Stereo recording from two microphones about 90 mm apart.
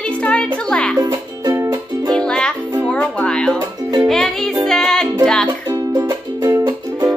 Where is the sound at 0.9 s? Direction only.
40° right (ahead or behind).